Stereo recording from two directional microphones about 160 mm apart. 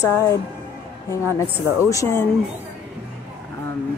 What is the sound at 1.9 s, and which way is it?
Speech, 20° left (ahead or behind).